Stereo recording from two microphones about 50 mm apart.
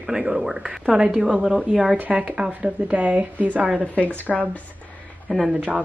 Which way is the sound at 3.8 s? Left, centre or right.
Left.